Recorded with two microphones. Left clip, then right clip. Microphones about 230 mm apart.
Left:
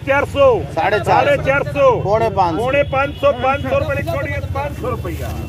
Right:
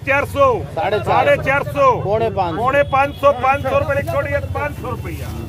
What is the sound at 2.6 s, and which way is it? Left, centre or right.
Speech, right.